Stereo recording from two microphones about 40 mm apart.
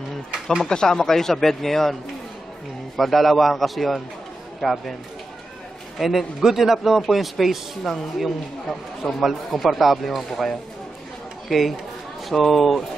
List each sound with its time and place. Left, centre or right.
0.3 s a sound: centre
0.7 s speech: centre
3.0 s a man's voice: centre
5.9 s a man's voice: centre